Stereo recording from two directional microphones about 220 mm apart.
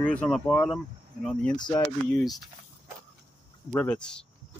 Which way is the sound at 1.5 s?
20° left (ahead or behind).